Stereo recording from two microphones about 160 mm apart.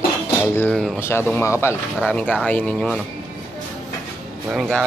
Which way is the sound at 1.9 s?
5° left (ahead or behind).